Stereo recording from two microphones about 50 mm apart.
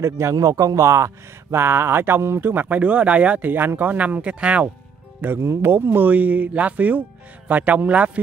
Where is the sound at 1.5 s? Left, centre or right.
Right.